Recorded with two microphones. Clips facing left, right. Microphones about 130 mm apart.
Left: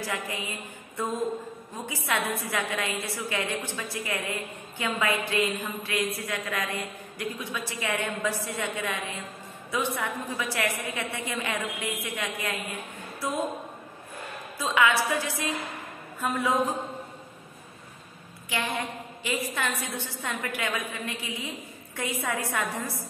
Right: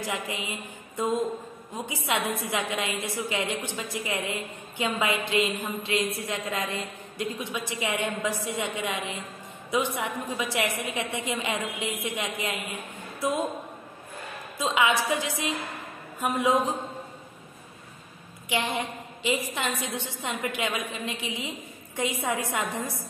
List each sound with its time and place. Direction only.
0.0 s a woman's voice: 20° right (ahead or behind)
14.6 s a woman's voice: 20° right (ahead or behind)
18.5 s a woman's voice: 20° right (ahead or behind)